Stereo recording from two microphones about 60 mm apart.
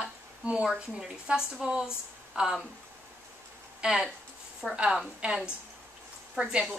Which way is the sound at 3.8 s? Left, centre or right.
Centre.